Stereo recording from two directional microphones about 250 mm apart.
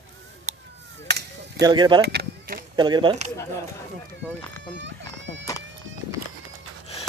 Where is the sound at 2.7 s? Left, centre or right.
Centre.